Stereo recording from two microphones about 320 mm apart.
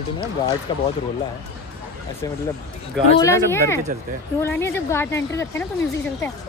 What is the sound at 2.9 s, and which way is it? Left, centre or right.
Speech, centre.